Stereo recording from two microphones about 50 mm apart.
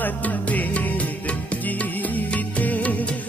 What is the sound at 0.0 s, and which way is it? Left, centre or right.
Music, left.